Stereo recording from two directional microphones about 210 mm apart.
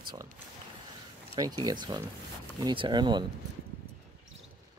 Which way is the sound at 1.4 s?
20° right (ahead or behind).